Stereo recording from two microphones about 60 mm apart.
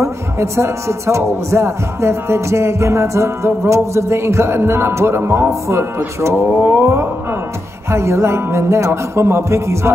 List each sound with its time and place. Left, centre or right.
0.0 s music: right
6.5 s a sound: right
7.9 s music: right